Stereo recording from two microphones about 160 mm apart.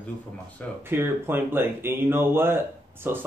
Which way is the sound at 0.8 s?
15° right (ahead or behind).